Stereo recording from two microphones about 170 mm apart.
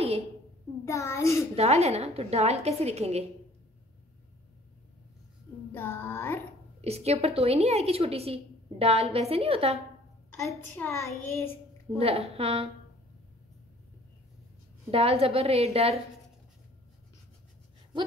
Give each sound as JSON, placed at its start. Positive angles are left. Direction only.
{"t": 0.8, "sound": "child singing", "side_deg": 15}
{"t": 1.5, "sound": "a woman's voice", "side_deg": -40}
{"t": 5.7, "sound": "child singing", "side_deg": 15}
{"t": 6.8, "sound": "a woman's voice", "side_deg": -40}
{"t": 10.8, "sound": "child singing", "side_deg": 15}
{"t": 12.0, "sound": "a woman's voice", "side_deg": -35}
{"t": 14.9, "sound": "a woman's voice", "side_deg": -35}